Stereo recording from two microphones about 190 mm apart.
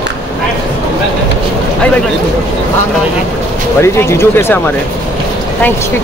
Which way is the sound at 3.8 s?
15° left (ahead or behind).